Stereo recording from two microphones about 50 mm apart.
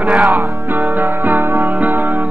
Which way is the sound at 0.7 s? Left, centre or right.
Right.